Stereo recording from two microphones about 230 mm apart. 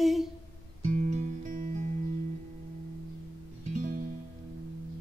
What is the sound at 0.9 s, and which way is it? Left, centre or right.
Music, right.